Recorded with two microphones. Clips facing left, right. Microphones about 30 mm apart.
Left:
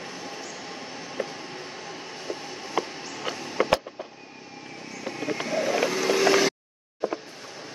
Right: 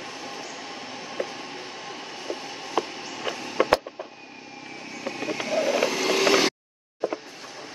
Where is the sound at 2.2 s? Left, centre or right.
Centre.